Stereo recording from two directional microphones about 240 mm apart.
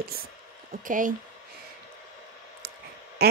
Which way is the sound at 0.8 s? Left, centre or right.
Right.